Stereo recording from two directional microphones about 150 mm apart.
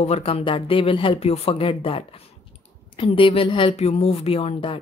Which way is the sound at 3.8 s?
45° left (ahead or behind).